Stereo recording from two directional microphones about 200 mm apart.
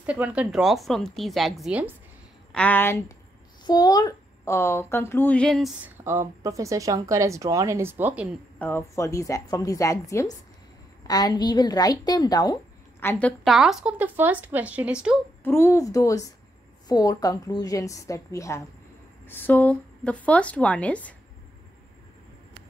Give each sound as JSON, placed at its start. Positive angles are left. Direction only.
{"t": 0.0, "sound": "speech", "side_deg": -5}
{"t": 2.5, "sound": "speech", "side_deg": 5}
{"t": 3.6, "sound": "speech", "side_deg": 20}
{"t": 6.0, "sound": "speech", "side_deg": -15}
{"t": 8.5, "sound": "a woman's voice", "side_deg": 10}
{"t": 13.0, "sound": "speech", "side_deg": 10}
{"t": 15.4, "sound": "speech", "side_deg": 10}